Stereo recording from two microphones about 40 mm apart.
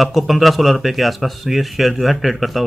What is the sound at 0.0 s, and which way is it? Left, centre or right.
Speech, centre.